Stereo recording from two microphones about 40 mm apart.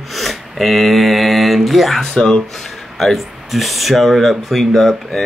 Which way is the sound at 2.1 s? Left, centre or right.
Centre.